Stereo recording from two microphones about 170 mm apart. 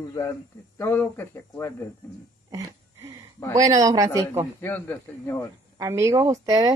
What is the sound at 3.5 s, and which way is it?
Speech, 20° right (ahead or behind).